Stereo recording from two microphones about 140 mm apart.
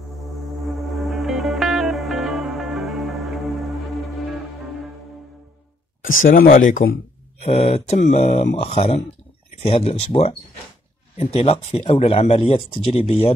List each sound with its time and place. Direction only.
0.5 s music: centre (ahead or behind)
6.0 s speech: 85° left
7.4 s speech: 45° left (ahead or behind)